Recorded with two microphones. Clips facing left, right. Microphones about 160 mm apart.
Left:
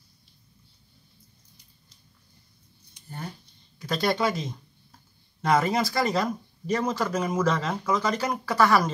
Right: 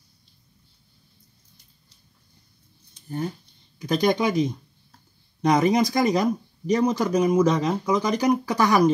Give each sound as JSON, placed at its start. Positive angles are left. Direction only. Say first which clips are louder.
{"t": 3.8, "sound": "speech", "louder": "right 4 dB", "side_deg": -15}